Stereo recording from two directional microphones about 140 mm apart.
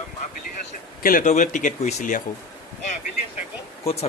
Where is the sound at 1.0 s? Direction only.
70° left (ahead or behind).